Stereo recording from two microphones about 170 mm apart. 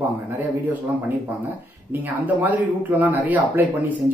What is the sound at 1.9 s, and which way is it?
Speech, 10° right (ahead or behind).